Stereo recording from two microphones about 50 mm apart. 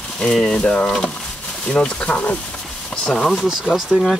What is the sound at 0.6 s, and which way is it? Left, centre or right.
Speech, left.